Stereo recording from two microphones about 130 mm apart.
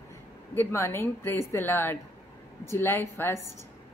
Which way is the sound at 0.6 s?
20° left (ahead or behind).